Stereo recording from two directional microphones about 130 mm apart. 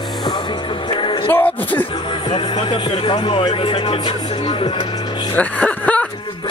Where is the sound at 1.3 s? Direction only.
15° left (ahead or behind).